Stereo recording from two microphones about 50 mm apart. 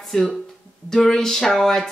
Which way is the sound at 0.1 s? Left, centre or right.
Centre.